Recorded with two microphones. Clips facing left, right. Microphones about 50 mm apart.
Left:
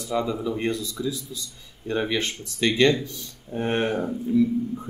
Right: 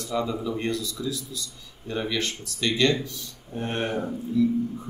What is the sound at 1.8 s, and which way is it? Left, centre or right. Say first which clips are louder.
Speech: left 3 dB; left.